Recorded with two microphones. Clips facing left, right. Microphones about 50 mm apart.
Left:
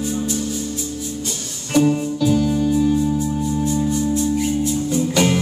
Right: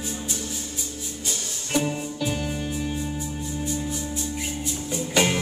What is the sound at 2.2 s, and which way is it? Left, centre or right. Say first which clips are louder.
Electric piano: left 11 dB; centre.